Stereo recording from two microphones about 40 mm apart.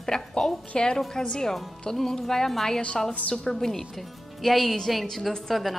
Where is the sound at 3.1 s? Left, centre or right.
Left.